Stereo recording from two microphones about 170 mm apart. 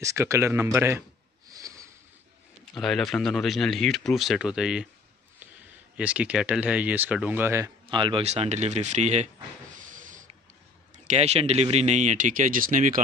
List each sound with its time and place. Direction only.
0.0 s speech: 20° right (ahead or behind)
1.5 s a sound: 20° right (ahead or behind)
2.7 s speech: centre (ahead or behind)
5.9 s speech: 5° right (ahead or behind)
7.9 s speech: 30° right (ahead or behind)
9.8 s a sound: 50° right (ahead or behind)
11.1 s speech: 40° right (ahead or behind)